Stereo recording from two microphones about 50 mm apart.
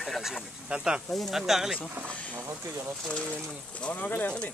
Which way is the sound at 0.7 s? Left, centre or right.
Centre.